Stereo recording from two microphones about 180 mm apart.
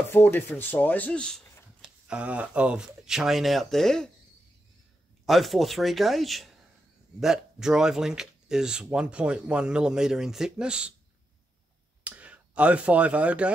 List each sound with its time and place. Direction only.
0.1 s speech: 10° left (ahead or behind)
5.2 s speech: centre (ahead or behind)
12.0 s speech: 10° right (ahead or behind)